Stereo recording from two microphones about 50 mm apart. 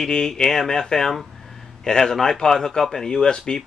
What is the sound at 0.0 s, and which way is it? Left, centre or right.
A man's voice, centre.